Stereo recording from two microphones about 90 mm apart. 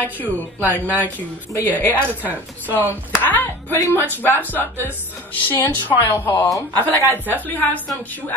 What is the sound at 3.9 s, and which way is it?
Speech, 20° left (ahead or behind).